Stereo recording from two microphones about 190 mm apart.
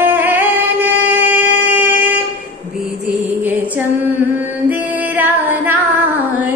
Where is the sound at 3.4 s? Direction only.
10° right (ahead or behind).